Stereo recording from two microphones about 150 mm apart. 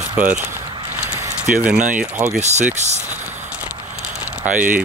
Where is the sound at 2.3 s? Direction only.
50° right (ahead or behind).